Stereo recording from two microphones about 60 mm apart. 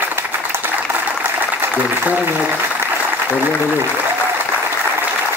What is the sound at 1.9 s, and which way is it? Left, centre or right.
Speech, right.